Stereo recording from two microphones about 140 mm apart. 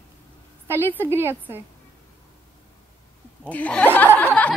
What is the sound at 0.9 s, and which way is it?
Speech, 15° right (ahead or behind).